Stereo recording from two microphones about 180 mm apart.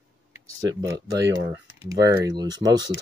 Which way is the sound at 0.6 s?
20° right (ahead or behind).